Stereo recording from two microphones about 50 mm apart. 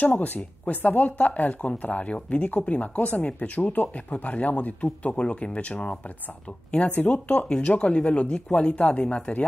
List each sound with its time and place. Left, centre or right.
0.0 s speech: left